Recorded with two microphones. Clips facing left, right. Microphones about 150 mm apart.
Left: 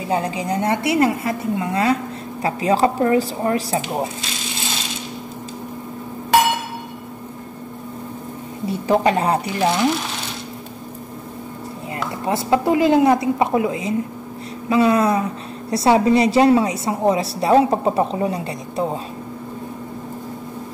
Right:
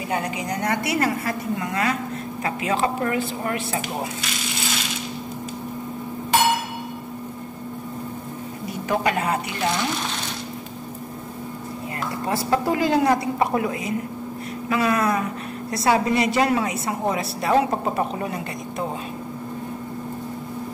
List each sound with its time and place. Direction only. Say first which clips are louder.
0.1 s speech: left 5 dB; 30° left (ahead or behind)
8.6 s a woman's voice: left 6 dB; 30° left (ahead or behind)
12.3 s speech: left 4 dB; 20° left (ahead or behind)